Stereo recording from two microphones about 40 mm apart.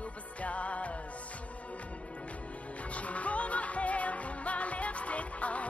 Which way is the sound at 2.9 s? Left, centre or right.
Left.